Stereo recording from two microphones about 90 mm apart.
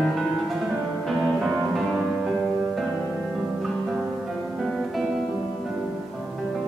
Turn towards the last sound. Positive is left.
turn(degrees=0)  # may be behind; listen again after turning